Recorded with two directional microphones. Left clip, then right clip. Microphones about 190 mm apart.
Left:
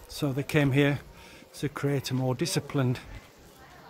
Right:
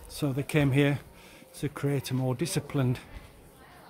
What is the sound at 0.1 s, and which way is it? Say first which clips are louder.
Speech: left 1 dB; centre (ahead or behind).